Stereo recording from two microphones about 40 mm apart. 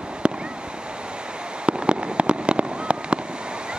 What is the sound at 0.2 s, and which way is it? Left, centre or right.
Waves, right.